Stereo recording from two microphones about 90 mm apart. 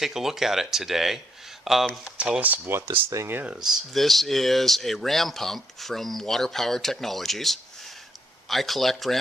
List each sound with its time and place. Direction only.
0.0 s speech: 5° right (ahead or behind); by 3.5 s 20° right (ahead or behind)
3.6 s speech: centre (ahead or behind)